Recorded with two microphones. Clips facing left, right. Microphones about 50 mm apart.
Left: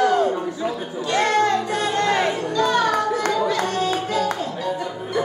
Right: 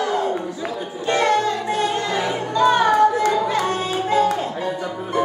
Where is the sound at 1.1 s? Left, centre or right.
Left.